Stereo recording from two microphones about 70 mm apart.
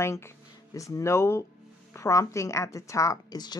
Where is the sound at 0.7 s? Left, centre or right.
Left.